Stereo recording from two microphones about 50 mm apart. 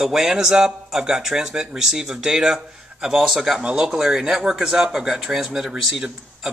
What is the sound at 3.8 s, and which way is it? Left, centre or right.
Speech, centre.